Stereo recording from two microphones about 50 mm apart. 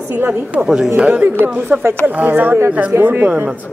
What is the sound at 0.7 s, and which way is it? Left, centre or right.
Speech, centre.